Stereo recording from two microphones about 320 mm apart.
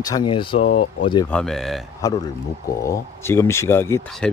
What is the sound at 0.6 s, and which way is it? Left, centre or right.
Speech, left.